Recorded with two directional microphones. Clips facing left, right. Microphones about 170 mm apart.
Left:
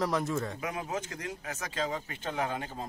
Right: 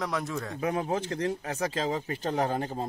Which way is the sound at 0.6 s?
35° right (ahead or behind).